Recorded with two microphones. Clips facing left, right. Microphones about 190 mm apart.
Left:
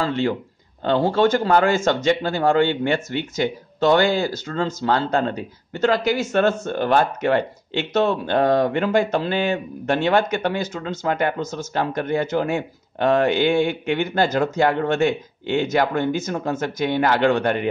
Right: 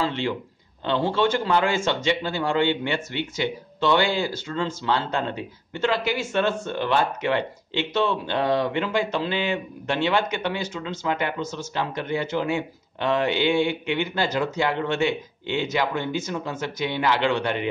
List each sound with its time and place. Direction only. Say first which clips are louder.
0.0 s speech: left 4 dB; 45° left (ahead or behind)